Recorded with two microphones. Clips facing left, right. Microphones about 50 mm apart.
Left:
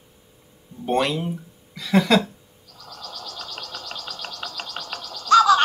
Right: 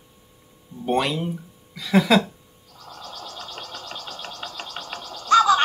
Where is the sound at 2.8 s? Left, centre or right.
Right.